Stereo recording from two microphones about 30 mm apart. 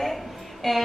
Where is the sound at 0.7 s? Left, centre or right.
Centre.